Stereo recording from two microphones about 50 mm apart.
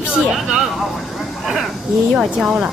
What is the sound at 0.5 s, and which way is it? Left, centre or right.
A woman's voice, centre.